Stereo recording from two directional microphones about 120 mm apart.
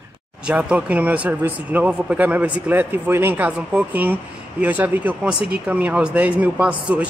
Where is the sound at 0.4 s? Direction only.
10° right (ahead or behind).